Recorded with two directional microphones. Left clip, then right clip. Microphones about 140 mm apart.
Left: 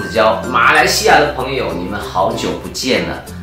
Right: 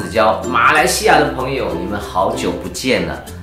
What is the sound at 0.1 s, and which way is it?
Speech, 10° right (ahead or behind).